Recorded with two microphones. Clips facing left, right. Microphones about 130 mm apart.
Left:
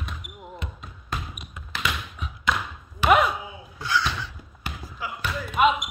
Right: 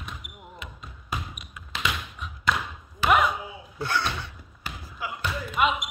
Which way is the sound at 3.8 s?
55° right (ahead or behind).